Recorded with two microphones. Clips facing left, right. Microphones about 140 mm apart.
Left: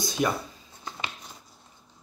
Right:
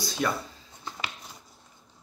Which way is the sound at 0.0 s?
20° left (ahead or behind).